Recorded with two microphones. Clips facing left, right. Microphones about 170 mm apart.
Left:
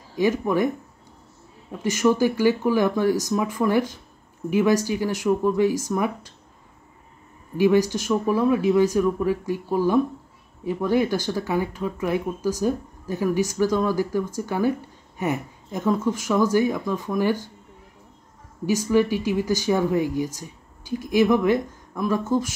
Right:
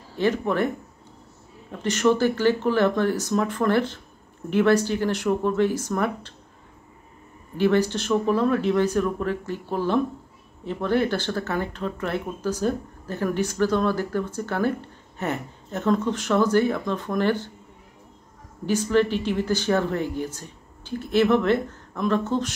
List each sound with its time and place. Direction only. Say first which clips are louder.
0.1 s speech: left 2 dB; 10° left (ahead or behind)
1.7 s speech: even; 10° left (ahead or behind)
7.5 s speech: left 2 dB; 10° left (ahead or behind)
18.7 s speech: left 1 dB; 10° left (ahead or behind)